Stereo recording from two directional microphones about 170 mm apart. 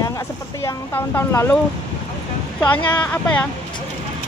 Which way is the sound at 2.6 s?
10° left (ahead or behind).